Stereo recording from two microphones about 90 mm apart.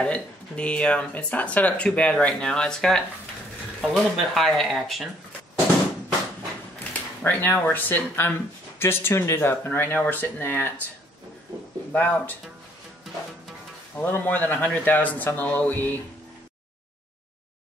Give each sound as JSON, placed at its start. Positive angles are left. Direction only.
{"t": 0.0, "sound": "speech", "side_deg": 10}
{"t": 6.9, "sound": "speech", "side_deg": 20}
{"t": 11.9, "sound": "speech", "side_deg": 20}
{"t": 13.9, "sound": "speech", "side_deg": 20}